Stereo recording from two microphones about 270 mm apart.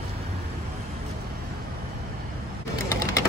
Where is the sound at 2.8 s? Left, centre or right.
Centre.